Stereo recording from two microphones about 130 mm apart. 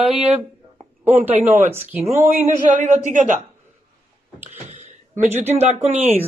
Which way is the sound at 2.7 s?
70° right (ahead or behind).